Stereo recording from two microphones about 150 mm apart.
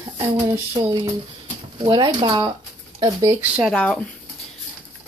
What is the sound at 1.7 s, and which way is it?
Speech, 35° right (ahead or behind).